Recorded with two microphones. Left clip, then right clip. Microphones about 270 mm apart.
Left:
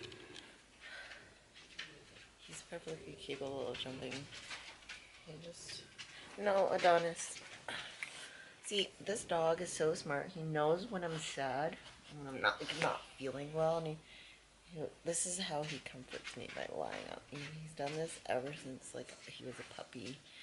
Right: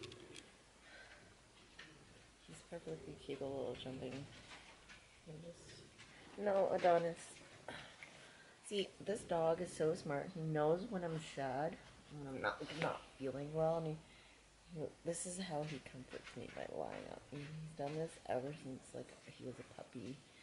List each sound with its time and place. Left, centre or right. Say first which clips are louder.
2.7 s speech: left 2 dB; centre
3.3 s speech: left 2 dB; right
3.7 s speech: left 4 dB; centre
6.4 s speech: left 3 dB; centre
7.7 s a sound: left 7 dB; centre
8.6 s speech: left 4 dB; centre
14.7 s speech: left 2 dB; right
15.0 s speech: left 6 dB; centre
18.9 s speech: left 3 dB; right